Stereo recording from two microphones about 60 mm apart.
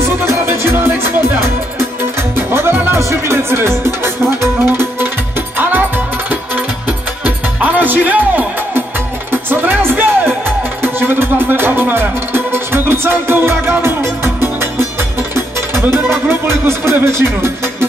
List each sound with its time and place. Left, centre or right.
0.0 s music: right
3.0 s music: right
7.2 s music: right